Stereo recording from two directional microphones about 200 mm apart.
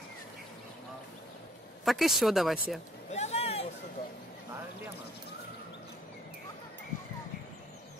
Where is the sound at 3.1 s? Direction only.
30° left (ahead or behind).